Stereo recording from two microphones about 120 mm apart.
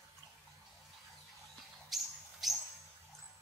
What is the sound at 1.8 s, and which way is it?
Bird, centre (ahead or behind).